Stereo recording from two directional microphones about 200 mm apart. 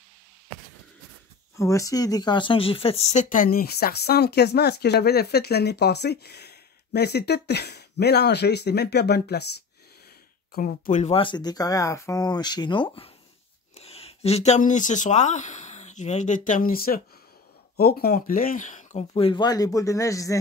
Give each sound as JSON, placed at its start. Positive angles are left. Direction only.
{"t": 1.6, "sound": "speech", "side_deg": 15}
{"t": 10.5, "sound": "speech", "side_deg": 45}